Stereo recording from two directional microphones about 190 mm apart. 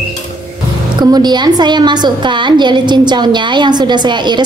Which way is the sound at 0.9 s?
20° right (ahead or behind).